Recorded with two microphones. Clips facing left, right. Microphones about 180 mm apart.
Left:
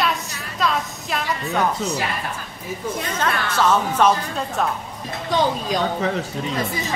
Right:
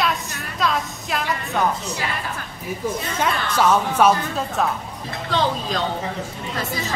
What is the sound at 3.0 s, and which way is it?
A woman's voice, 10° right (ahead or behind).